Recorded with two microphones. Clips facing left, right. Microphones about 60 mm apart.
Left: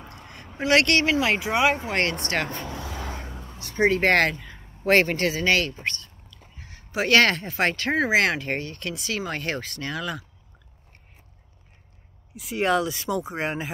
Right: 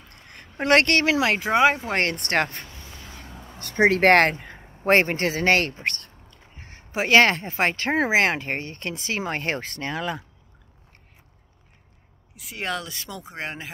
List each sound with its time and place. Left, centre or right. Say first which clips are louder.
0.0 s a sound: left 6 dB; centre
0.6 s speech: right 1 dB; right
2.6 s vehicle: left 10 dB; left
3.3 s a sound: left 2 dB; centre
3.5 s speech: right 2 dB; right
4.6 s speech: even; right
6.3 s a sound: right 1 dB; right
7.0 s speech: right 2 dB; right
12.4 s speech: left 7 dB; centre